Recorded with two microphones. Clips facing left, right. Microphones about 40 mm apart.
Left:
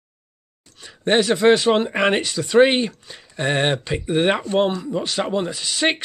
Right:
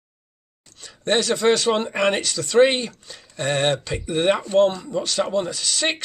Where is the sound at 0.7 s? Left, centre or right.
Centre.